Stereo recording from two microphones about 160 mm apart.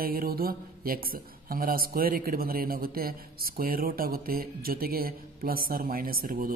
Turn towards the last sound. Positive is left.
turn(degrees=-60)  # may be behind; listen again after turning